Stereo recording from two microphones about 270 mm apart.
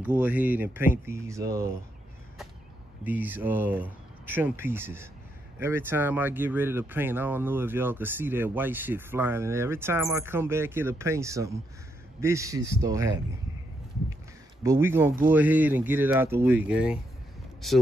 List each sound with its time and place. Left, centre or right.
0.0 s speech: centre
3.0 s speech: centre
14.6 s speech: centre